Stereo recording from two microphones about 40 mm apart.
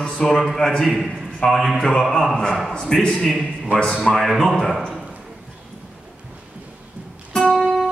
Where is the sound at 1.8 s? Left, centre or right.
Centre.